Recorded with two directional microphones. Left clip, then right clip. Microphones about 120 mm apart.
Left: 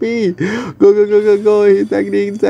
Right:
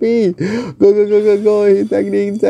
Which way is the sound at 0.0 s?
30° right (ahead or behind).